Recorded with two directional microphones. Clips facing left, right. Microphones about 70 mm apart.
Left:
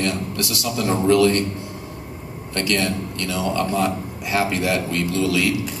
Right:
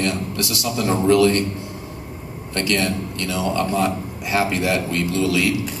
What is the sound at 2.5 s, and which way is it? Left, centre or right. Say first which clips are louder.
A man's voice: right 1 dB; right.